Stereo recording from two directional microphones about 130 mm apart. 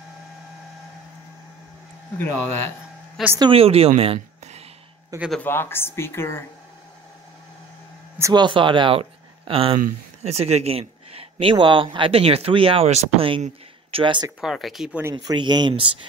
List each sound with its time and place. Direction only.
2.1 s speech: 15° left (ahead or behind)
3.3 s a woman's voice: 45° right (ahead or behind)
5.4 s speech: 15° left (ahead or behind)
8.2 s speech: 35° right (ahead or behind); by 13.3 s 50° right (ahead or behind)
13.9 s speech: 40° right (ahead or behind)
14.4 s speech: centre (ahead or behind)
15.1 s speech: 35° right (ahead or behind)